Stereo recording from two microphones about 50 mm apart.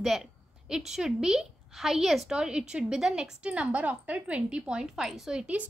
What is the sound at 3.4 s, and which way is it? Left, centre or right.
A woman's voice, right.